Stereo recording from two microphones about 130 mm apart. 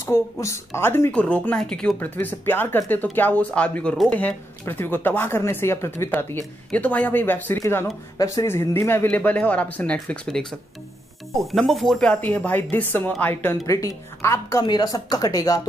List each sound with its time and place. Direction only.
0.0 s speech: 20° left (ahead or behind); by 2.0 s 5° left (ahead or behind)
2.0 s speech: 15° left (ahead or behind)
11.5 s a woman's voice: centre (ahead or behind); by 15.6 s 25° left (ahead or behind)